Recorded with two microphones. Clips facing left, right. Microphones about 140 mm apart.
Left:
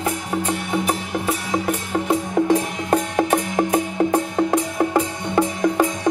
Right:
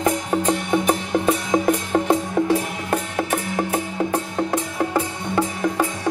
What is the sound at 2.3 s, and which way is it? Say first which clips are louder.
Music: left 2 dB; 15° left (ahead or behind).